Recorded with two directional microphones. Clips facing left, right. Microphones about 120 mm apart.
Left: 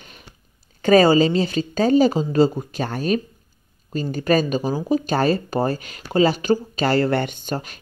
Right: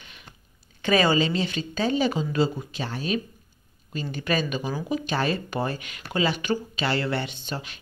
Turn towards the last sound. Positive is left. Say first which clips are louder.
# left 6 dB
turn(degrees=45)  # may be behind; listen again after turning